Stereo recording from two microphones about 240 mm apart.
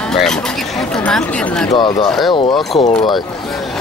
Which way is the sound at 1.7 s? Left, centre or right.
Centre.